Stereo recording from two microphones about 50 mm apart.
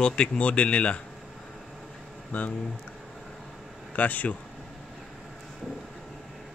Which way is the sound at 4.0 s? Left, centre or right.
Left.